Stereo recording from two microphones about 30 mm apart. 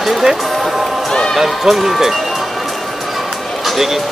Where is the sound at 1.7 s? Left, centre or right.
Centre.